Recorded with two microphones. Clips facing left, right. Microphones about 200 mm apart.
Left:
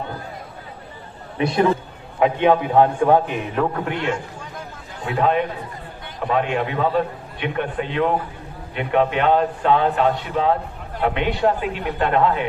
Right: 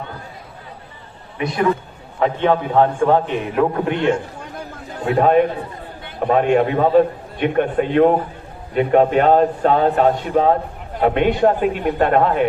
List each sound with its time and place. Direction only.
1.4 s a man's voice: 30° left (ahead or behind)
2.1 s a man's voice: 15° left (ahead or behind)
3.8 s a man's voice: 20° right (ahead or behind)
5.0 s a man's voice: 40° right (ahead or behind)